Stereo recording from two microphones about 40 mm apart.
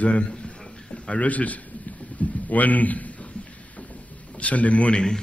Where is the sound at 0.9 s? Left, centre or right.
Left.